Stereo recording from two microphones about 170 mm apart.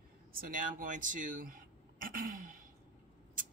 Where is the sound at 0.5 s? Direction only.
50° right (ahead or behind).